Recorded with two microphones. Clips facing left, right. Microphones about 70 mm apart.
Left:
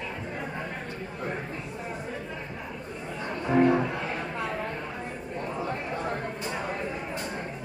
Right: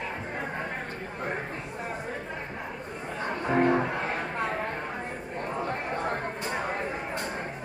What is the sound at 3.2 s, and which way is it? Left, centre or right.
Music, right.